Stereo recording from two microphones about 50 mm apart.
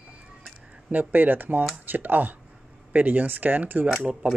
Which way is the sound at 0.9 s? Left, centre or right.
Right.